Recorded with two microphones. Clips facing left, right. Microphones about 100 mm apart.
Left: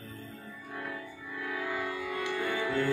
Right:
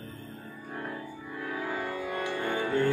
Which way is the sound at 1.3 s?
40° right (ahead or behind).